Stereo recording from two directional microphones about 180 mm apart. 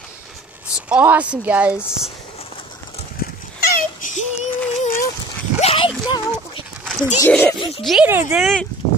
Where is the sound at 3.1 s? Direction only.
55° left (ahead or behind).